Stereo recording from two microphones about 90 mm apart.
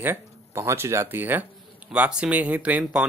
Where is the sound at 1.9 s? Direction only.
10° right (ahead or behind).